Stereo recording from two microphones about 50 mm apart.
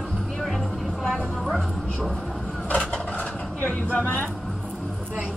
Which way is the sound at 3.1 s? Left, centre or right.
Left.